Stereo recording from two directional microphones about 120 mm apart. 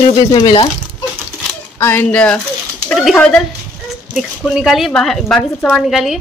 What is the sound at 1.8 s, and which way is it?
Speech, 15° left (ahead or behind).